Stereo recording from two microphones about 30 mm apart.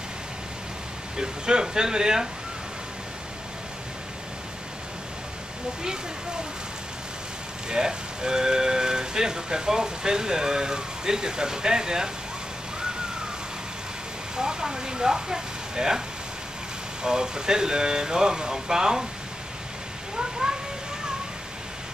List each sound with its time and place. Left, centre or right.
1.1 s speech: right
7.7 s speech: right
14.3 s speech: right
17.0 s speech: right
20.2 s cat: right